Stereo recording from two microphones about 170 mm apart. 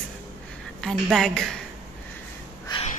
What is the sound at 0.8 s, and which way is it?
Speech, centre (ahead or behind).